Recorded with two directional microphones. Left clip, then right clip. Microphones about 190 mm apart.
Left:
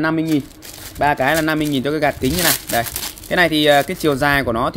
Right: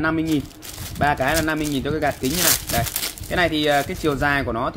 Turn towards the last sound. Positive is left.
turn(degrees=45)  # may be behind; listen again after turning